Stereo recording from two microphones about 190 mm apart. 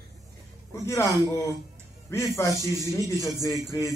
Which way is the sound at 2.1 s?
15° left (ahead or behind).